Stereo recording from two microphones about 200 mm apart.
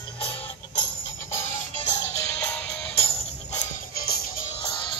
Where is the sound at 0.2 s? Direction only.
30° left (ahead or behind).